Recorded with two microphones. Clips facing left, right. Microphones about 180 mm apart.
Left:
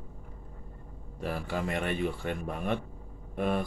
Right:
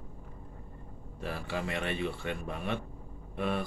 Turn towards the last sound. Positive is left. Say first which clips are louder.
# left 3 dB
turn(degrees=45)  # may be behind; listen again after turning